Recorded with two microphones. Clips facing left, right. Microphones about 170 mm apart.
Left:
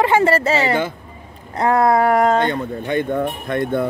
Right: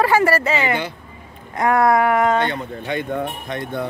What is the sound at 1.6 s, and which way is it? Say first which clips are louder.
Speech: left 1 dB; 30° left (ahead or behind).